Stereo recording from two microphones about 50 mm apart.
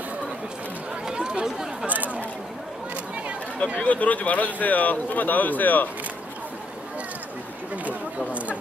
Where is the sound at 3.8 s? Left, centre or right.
Left.